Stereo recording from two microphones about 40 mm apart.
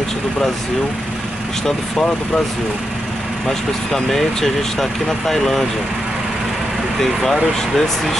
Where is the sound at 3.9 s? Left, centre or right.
Centre.